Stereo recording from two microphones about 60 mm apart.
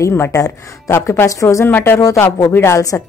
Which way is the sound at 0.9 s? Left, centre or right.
Left.